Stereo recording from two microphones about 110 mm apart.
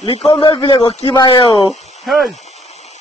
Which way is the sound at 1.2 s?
45° left (ahead or behind).